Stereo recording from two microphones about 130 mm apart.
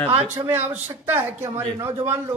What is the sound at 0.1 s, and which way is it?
A woman's voice, 20° right (ahead or behind).